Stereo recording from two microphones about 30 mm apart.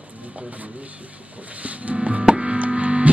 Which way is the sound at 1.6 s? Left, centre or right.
Right.